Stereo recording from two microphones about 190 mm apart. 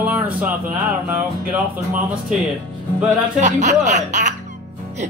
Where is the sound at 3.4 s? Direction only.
40° right (ahead or behind).